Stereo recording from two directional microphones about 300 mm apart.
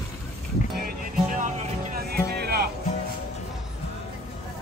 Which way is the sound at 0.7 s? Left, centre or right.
Right.